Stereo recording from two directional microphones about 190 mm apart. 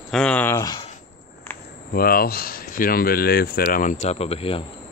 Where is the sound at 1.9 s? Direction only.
50° left (ahead or behind); by 4.7 s 30° left (ahead or behind).